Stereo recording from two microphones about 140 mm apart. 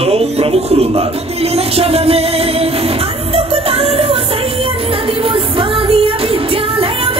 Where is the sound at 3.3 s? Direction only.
45° right (ahead or behind).